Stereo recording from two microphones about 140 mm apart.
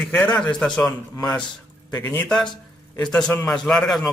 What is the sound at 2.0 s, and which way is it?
Speech, 15° left (ahead or behind).